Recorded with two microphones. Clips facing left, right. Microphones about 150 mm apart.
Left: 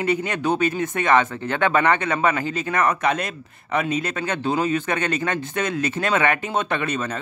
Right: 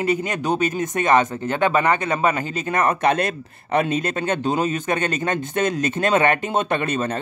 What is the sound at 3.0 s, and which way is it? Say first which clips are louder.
Speech: right 4 dB; 40° right (ahead or behind).